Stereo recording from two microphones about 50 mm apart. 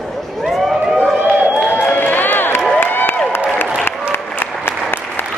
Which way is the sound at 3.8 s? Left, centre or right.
Left.